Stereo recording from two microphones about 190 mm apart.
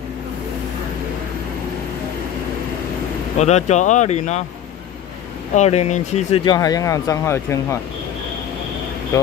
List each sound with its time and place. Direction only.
3.3 s speech: 35° left (ahead or behind)
5.5 s speech: 35° left (ahead or behind)
6.4 s speech: 20° left (ahead or behind)
9.1 s speech: 15° left (ahead or behind)